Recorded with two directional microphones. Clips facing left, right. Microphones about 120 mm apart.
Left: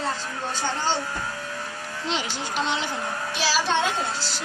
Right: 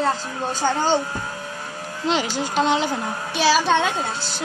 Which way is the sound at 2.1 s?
45° right (ahead or behind).